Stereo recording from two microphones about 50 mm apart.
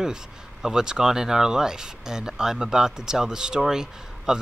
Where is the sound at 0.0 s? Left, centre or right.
Centre.